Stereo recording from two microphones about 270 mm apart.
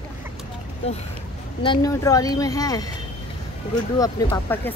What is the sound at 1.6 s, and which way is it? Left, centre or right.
Speech, centre.